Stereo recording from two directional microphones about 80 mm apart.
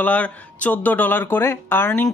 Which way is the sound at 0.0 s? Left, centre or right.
Centre.